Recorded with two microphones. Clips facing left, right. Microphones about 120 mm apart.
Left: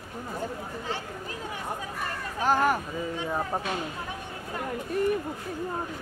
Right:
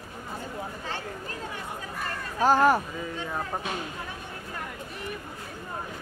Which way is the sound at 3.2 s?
10° left (ahead or behind).